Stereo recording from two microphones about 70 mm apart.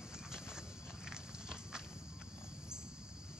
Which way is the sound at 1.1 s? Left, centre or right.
Centre.